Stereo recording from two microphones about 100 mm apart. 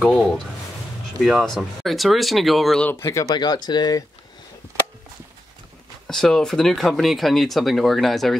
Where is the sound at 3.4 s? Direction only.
45° left (ahead or behind).